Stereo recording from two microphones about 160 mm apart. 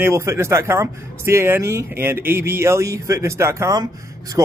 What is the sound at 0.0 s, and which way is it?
Speech, 15° right (ahead or behind).